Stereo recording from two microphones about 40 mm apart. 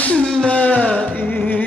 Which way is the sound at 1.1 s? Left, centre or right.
Left.